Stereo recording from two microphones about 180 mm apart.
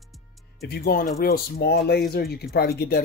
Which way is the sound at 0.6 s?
60° left (ahead or behind).